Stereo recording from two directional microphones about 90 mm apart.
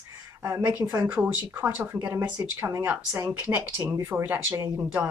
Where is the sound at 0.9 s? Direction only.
20° right (ahead or behind).